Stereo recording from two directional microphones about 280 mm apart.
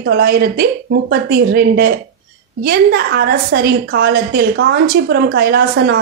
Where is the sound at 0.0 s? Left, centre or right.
Right.